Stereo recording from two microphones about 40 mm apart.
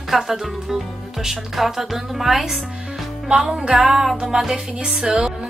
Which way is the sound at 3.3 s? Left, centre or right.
Centre.